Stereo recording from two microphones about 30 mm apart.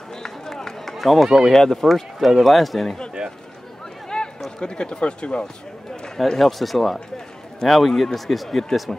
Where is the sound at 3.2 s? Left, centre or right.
Centre.